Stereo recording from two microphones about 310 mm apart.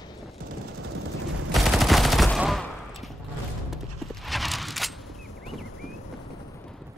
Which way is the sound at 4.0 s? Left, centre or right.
Centre.